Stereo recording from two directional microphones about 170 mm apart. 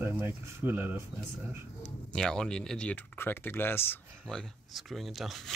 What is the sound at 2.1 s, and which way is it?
Speech, 5° left (ahead or behind).